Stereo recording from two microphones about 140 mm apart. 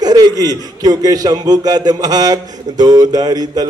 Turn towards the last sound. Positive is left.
turn(degrees=-30)  # may be behind; listen again after turning